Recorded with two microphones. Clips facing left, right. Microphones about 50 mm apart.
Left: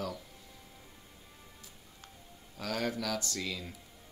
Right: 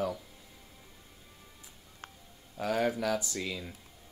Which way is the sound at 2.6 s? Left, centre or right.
Centre.